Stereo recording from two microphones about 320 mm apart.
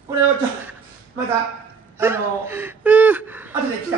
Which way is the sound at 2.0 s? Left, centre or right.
Centre.